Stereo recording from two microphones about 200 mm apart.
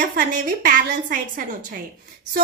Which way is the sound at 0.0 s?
45° right (ahead or behind).